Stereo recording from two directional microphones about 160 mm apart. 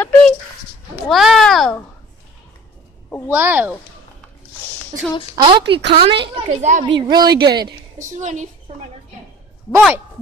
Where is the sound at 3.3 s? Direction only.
10° right (ahead or behind).